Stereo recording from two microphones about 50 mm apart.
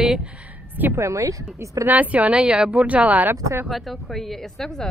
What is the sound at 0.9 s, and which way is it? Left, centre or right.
Speech, right.